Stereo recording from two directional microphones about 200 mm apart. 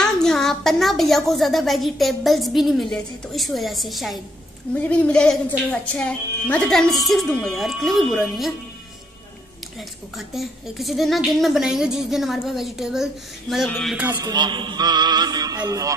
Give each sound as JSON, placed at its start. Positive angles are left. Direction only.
{"t": 0.0, "sound": "a woman's voice", "side_deg": 5}
{"t": 9.8, "sound": "a woman's voice", "side_deg": 0}
{"t": 14.1, "sound": "music", "side_deg": -20}